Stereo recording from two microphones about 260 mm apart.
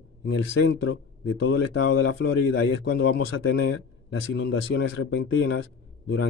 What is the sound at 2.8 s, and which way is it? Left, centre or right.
Speech, left.